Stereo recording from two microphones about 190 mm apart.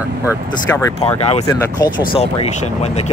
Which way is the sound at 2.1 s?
35° left (ahead or behind).